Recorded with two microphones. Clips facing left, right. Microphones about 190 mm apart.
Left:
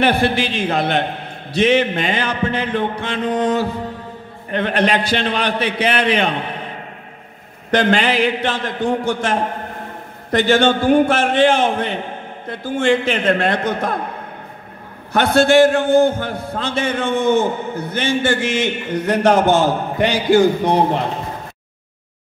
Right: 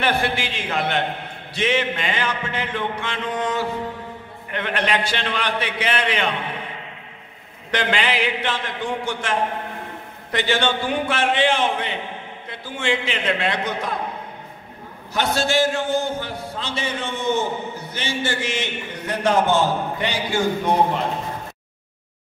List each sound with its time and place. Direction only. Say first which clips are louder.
0.0 s a man's voice: left 6 dB; 35° left (ahead or behind)
7.7 s a man's voice: left 7 dB; 45° left (ahead or behind)
15.1 s a man's voice: left 9 dB; 60° left (ahead or behind)